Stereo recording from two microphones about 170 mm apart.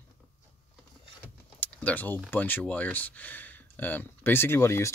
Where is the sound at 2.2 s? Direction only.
10° left (ahead or behind).